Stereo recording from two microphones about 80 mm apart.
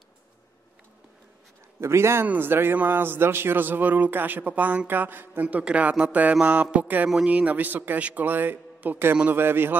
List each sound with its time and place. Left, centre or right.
1.8 s a man's voice: right; by 6.3 s centre
6.4 s mantra: centre
7.2 s a man's voice: centre